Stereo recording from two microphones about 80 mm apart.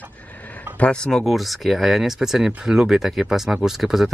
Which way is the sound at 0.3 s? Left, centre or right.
Centre.